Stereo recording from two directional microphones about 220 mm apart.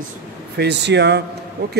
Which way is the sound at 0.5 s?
50° right (ahead or behind).